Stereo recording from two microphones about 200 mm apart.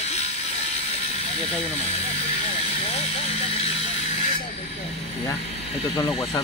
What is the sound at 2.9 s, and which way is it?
Vehicle, 30° left (ahead or behind).